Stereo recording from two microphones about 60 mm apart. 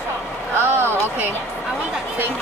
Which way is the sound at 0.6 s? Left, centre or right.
Right.